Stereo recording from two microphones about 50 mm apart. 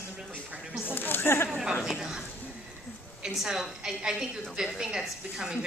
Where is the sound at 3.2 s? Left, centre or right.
Centre.